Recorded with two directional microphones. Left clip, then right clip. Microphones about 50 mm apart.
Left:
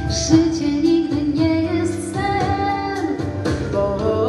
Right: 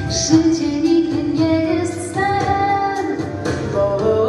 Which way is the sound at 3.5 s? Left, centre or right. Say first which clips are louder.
Right 3 dB; right.